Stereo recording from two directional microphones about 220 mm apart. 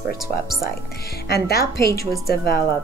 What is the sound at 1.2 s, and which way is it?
Speech, 45° left (ahead or behind).